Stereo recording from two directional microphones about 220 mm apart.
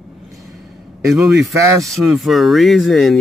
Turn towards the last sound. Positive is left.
turn(degrees=0)  # may be behind; listen again after turning